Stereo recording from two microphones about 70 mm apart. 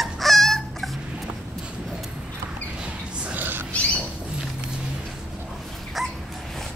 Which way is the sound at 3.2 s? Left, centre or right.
Right.